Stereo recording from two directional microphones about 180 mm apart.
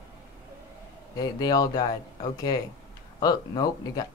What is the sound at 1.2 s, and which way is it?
Speech, 20° left (ahead or behind).